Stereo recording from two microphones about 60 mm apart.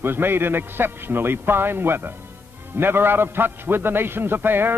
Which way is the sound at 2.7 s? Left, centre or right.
Right.